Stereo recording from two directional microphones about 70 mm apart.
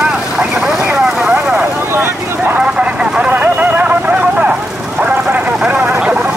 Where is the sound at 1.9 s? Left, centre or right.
Right.